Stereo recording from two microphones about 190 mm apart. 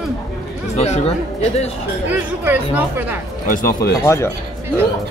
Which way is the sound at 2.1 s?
10° right (ahead or behind).